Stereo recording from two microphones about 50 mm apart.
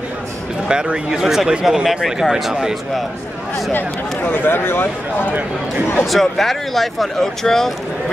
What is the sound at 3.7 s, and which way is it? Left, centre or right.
Speech, left.